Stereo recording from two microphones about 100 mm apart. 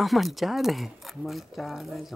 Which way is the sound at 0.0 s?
Centre (ahead or behind).